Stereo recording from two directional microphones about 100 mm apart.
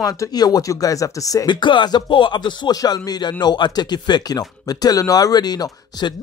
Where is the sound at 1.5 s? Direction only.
50° left (ahead or behind).